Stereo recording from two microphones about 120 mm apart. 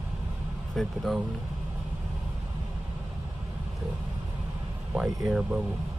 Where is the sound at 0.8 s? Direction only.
Centre (ahead or behind).